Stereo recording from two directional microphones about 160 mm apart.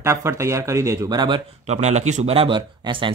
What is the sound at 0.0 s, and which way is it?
Speech, 15° right (ahead or behind).